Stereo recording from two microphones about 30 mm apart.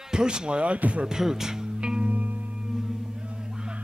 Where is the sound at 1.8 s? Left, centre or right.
Right.